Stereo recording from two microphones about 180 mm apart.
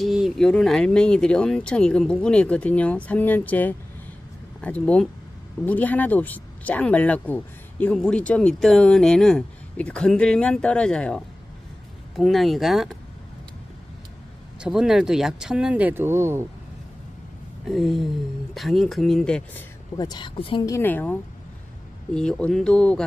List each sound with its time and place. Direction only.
0.0 s speech: centre (ahead or behind)
14.6 s speech: 5° right (ahead or behind)
17.6 s speech: centre (ahead or behind)
20.0 s a woman's voice: 25° left (ahead or behind)
20.6 s speech: 15° left (ahead or behind)